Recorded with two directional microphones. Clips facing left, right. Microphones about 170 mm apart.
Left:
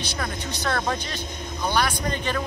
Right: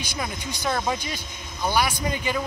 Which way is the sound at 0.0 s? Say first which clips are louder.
Left 1 dB; 15° right (ahead or behind).